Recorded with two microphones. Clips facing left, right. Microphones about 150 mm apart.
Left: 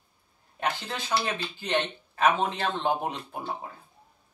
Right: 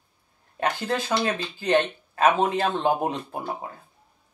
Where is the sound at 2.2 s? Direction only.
40° right (ahead or behind).